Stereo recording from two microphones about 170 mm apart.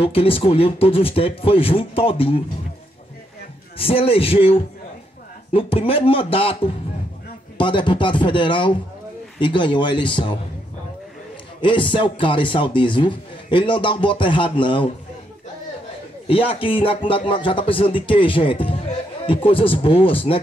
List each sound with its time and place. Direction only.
0.0 s speech: 35° left (ahead or behind)
3.7 s speech: 35° left (ahead or behind)
11.6 s speech: 30° left (ahead or behind)
16.3 s speech: 30° left (ahead or behind)